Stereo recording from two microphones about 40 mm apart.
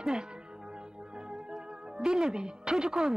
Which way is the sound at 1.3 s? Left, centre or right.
Centre.